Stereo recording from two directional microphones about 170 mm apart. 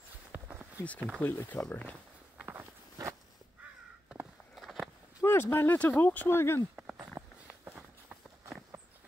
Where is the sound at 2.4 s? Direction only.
15° right (ahead or behind).